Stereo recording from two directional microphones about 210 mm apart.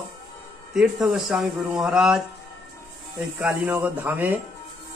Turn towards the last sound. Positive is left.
turn(degrees=-10)  # may be behind; listen again after turning